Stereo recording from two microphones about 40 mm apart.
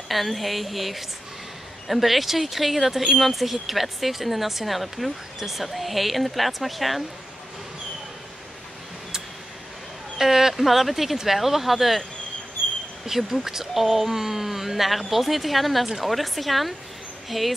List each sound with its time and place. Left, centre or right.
0.1 s speech: centre
10.1 s speech: centre
13.0 s speech: centre